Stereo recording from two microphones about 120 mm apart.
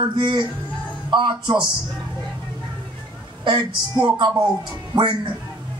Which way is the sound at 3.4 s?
40° right (ahead or behind).